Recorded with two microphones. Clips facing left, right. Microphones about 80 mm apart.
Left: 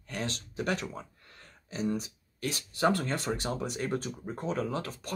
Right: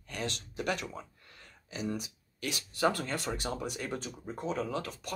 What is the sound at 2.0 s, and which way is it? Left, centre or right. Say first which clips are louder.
Speech: left 3 dB; left.